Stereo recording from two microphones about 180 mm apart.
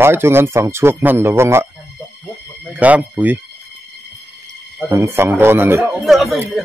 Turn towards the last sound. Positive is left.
turn(degrees=0)  # may be behind; listen again after turning